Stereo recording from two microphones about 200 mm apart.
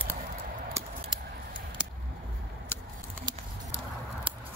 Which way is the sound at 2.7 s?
10° left (ahead or behind).